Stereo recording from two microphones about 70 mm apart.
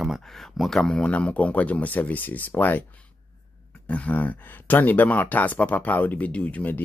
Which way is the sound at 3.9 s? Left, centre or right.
Left.